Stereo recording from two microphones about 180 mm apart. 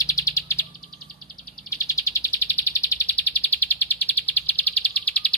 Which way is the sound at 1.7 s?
15° left (ahead or behind).